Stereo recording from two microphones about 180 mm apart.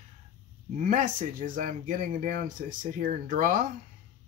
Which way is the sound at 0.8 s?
45° right (ahead or behind).